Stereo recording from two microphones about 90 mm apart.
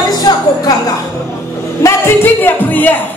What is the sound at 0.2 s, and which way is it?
Music, 45° left (ahead or behind).